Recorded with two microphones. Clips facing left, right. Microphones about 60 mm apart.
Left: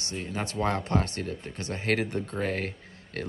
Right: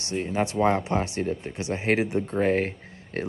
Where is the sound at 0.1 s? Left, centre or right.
Right.